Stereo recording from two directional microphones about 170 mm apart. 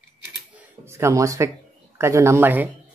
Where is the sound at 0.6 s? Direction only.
15° right (ahead or behind).